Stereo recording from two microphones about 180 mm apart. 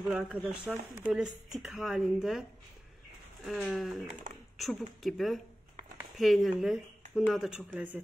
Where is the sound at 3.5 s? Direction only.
5° left (ahead or behind).